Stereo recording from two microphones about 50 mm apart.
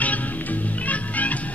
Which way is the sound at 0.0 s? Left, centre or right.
Left.